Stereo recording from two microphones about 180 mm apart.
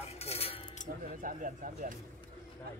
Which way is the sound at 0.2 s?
35° left (ahead or behind).